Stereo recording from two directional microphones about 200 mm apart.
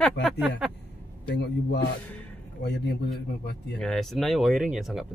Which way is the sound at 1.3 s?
55° left (ahead or behind).